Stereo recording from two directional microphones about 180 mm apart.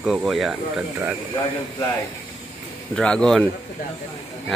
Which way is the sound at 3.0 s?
5° left (ahead or behind).